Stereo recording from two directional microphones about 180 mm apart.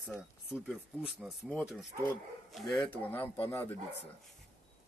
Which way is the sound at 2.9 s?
10° left (ahead or behind).